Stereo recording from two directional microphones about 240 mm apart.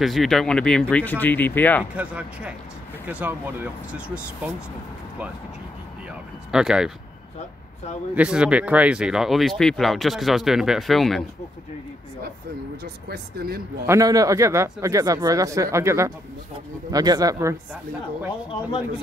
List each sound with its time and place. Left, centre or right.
0.0 s speech: centre
2.0 s speech: centre
6.5 s speech: centre
7.3 s speech: left
8.1 s speech: centre
12.8 s speech: right
13.8 s speech: centre